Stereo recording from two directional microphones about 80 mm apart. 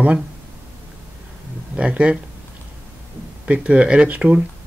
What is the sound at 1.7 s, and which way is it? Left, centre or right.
Speech, centre.